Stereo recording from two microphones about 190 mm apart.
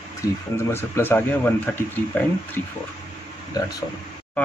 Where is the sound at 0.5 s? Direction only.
10° left (ahead or behind).